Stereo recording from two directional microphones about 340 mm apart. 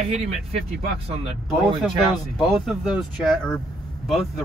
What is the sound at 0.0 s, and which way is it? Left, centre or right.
Speech, centre.